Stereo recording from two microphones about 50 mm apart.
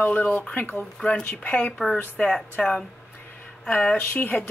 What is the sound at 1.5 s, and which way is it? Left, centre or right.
Speech, left.